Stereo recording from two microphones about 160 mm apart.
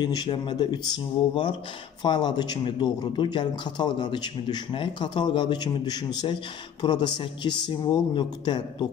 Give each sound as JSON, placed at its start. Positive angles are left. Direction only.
{"t": 0.0, "sound": "speech", "side_deg": 25}